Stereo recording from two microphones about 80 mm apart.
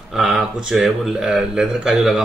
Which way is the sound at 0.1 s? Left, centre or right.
Centre.